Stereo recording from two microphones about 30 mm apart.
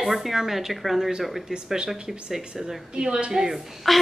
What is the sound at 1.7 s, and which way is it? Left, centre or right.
Speech, right.